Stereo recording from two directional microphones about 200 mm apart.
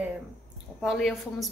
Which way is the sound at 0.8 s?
Centre (ahead or behind).